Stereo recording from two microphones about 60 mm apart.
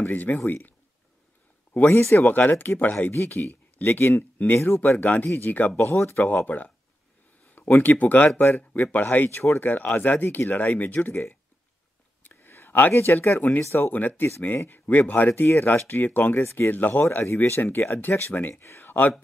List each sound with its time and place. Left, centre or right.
0.0 s speech: left
1.9 s speech: left
6.2 s speech: left
7.4 s a sound: left
7.8 s speech: left
12.2 s a sound: left
12.9 s speech: left
13.8 s speech: left